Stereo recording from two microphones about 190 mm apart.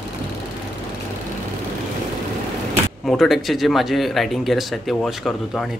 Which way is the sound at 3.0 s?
Centre (ahead or behind).